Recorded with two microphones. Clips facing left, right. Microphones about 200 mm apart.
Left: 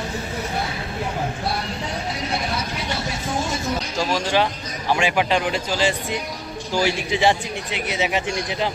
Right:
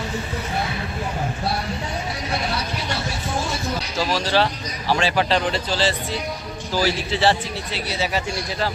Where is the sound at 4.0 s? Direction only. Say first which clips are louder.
Right 1 dB; 15° left (ahead or behind).